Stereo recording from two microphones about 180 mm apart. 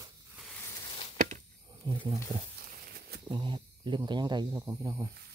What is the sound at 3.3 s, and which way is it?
Speech, 25° right (ahead or behind).